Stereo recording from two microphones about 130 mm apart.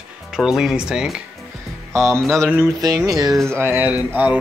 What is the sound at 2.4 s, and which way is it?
Speech, 20° right (ahead or behind).